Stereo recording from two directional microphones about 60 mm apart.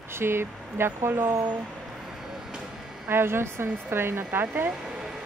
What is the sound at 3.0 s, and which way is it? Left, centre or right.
A woman's voice, right.